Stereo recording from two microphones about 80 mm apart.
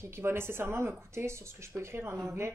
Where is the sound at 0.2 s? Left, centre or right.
Right.